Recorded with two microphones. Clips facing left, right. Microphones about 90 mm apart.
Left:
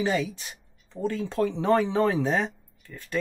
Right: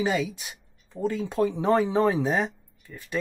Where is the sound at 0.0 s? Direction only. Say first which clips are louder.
Even; 15° right (ahead or behind).